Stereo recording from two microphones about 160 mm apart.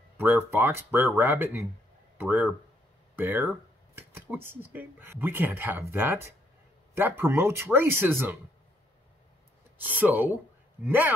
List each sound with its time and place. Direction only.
0.2 s speech: 15° right (ahead or behind)
9.8 s speech: 10° right (ahead or behind)